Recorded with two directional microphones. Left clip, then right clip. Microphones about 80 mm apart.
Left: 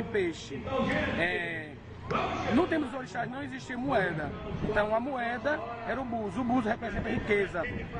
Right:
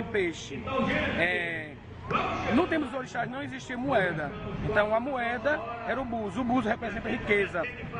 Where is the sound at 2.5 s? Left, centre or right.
Centre.